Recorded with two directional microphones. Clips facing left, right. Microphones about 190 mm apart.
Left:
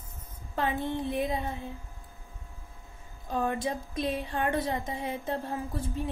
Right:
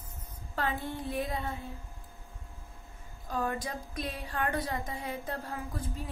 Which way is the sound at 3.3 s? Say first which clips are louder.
Left 4 dB; 25° left (ahead or behind).